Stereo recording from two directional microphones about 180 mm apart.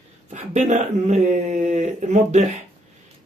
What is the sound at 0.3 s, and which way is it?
Speech, 40° right (ahead or behind).